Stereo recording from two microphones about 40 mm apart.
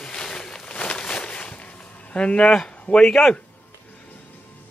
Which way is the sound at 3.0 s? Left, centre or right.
Centre.